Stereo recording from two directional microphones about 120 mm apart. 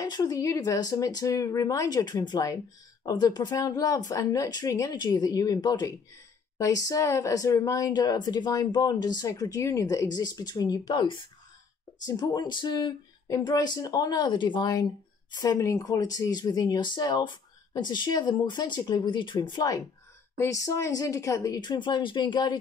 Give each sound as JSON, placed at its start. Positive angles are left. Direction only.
{"t": 0.0, "sound": "a woman's voice", "side_deg": 35}